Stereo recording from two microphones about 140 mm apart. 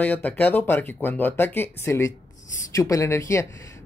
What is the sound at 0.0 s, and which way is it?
Speech, 10° left (ahead or behind).